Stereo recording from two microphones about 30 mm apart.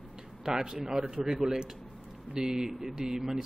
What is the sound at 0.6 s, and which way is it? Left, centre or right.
A man's voice, centre.